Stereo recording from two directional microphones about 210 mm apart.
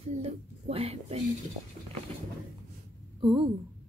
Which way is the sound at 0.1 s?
30° right (ahead or behind).